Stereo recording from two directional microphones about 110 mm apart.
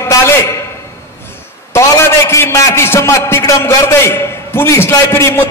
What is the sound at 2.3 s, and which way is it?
A man's voice, 25° left (ahead or behind).